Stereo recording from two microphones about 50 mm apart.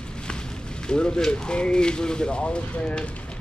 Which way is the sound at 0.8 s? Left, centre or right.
Centre.